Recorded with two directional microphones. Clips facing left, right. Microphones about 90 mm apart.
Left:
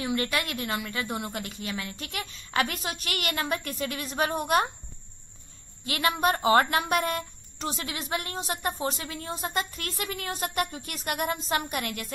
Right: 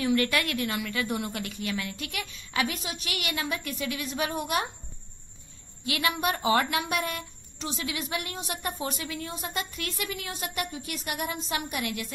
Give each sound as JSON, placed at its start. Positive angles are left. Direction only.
{"t": 0.0, "sound": "a woman's voice", "side_deg": 25}
{"t": 5.9, "sound": "a woman's voice", "side_deg": 40}